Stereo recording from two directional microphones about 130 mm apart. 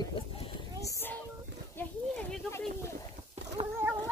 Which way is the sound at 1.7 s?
15° left (ahead or behind).